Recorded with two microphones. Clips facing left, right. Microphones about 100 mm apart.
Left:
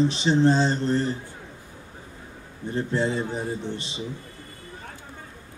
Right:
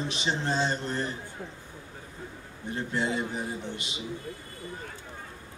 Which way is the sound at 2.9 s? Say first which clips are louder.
Left 3 dB; 35° left (ahead or behind).